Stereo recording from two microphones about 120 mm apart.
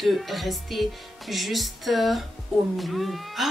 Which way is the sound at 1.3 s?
Centre (ahead or behind).